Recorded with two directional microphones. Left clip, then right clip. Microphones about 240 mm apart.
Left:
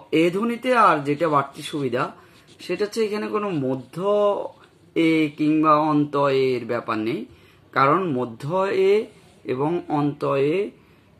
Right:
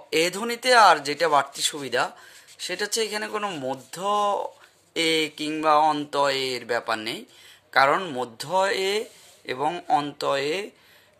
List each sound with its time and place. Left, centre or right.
0.1 s speech: right
4.9 s speech: right
10.1 s speech: right